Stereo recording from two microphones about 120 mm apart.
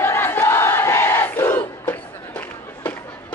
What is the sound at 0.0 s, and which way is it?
Crowd, 20° left (ahead or behind).